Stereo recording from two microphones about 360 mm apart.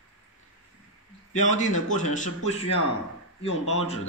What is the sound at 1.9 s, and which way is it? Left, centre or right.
Speech, left.